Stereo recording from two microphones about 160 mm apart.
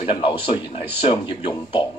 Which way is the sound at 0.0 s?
30° left (ahead or behind).